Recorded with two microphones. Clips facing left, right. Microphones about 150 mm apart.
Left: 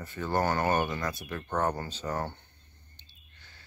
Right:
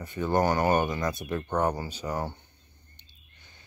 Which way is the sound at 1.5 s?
10° right (ahead or behind).